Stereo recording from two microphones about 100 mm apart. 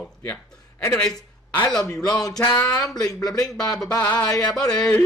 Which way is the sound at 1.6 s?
35° left (ahead or behind).